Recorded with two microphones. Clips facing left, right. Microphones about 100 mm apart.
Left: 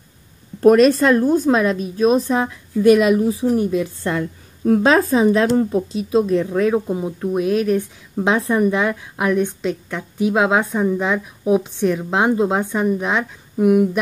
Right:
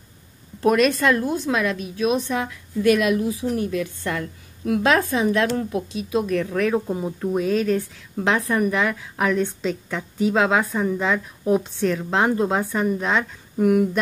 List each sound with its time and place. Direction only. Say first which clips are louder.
0.6 s a woman's voice: left 7 dB; 35° left (ahead or behind); by 9.5 s 15° left (ahead or behind)
9.6 s a woman's voice: left 2 dB; 5° left (ahead or behind)
10.2 s a woman's voice: left 2 dB; 15° left (ahead or behind)